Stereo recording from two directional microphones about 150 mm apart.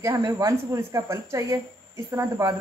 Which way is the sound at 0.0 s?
20° right (ahead or behind).